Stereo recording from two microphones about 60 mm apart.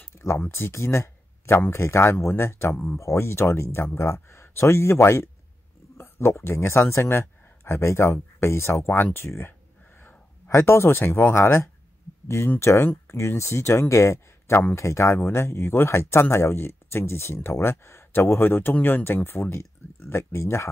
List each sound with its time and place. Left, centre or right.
0.0 s a sound: left
0.5 s speech: left
2.7 s speech: left
3.0 s speech: left
9.9 s a sound: left
10.5 s speech: left